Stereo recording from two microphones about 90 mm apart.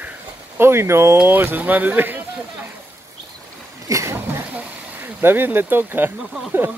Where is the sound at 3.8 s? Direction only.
35° right (ahead or behind).